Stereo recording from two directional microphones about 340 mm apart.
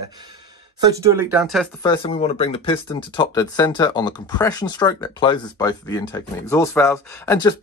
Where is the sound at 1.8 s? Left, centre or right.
Centre.